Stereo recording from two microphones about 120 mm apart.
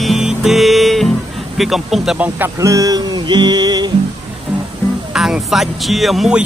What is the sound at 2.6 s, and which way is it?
Music, 30° right (ahead or behind).